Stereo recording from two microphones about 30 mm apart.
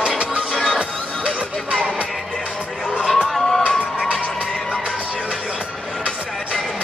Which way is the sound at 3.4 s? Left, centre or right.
Centre.